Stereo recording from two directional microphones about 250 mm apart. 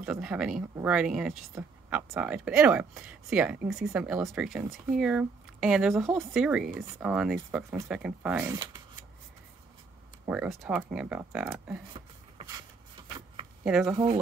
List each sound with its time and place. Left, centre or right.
0.0 s speech: centre
10.2 s speech: centre
11.9 s a sound: centre
13.7 s speech: centre